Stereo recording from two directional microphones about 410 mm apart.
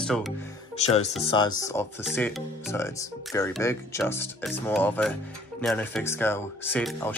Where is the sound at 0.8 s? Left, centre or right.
Centre.